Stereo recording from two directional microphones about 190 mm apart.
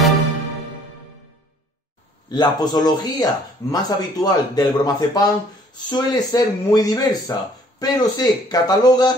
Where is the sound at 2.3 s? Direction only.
20° left (ahead or behind).